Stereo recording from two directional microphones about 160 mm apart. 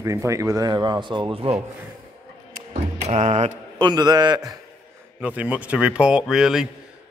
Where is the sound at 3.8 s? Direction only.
25° right (ahead or behind).